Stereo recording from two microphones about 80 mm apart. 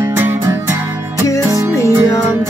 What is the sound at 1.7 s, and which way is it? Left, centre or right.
Music, left.